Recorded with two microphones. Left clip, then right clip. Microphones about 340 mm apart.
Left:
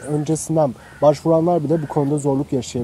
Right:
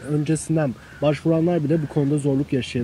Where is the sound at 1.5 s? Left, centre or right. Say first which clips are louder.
Left 3 dB; left.